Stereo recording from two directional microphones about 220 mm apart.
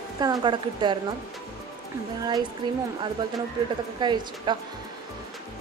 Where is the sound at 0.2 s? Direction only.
20° right (ahead or behind).